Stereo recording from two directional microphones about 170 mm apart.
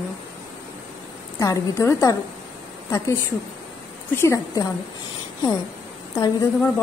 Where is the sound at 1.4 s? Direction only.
20° left (ahead or behind).